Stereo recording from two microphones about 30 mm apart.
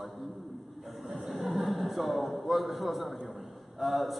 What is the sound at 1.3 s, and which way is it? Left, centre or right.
A man's voice, centre.